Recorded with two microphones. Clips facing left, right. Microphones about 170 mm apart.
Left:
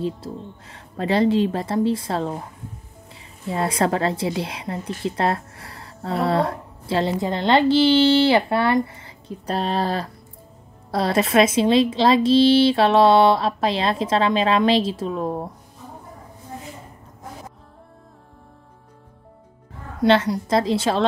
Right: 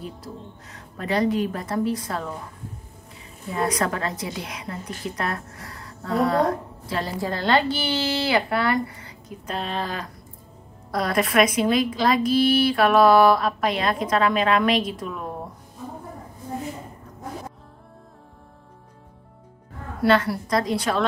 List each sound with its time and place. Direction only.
0.0 s a woman's voice: 30° left (ahead or behind)
3.5 s a woman's voice: 30° left (ahead or behind)
9.5 s a woman's voice: 35° left (ahead or behind)
20.0 s a woman's voice: 20° left (ahead or behind)